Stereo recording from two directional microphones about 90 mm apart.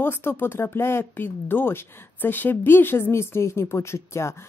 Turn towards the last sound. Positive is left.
turn(degrees=30)  # may be behind; listen again after turning